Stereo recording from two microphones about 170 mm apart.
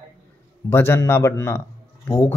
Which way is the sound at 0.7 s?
15° left (ahead or behind).